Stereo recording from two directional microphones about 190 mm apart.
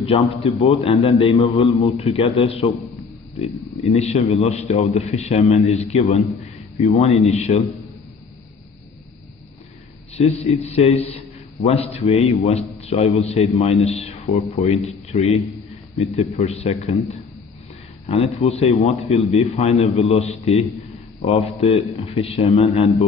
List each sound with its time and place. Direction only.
0.0 s a man's voice: 30° left (ahead or behind)
10.2 s a man's voice: 30° left (ahead or behind)
18.0 s a man's voice: 30° left (ahead or behind)